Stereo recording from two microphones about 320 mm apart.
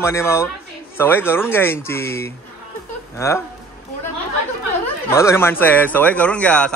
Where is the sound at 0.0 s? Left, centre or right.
Centre.